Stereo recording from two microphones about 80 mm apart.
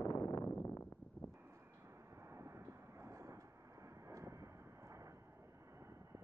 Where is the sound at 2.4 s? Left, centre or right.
Right.